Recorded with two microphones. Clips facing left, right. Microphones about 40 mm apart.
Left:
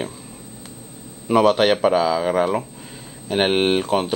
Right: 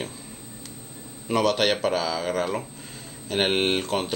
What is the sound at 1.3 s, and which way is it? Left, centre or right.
Speech, centre.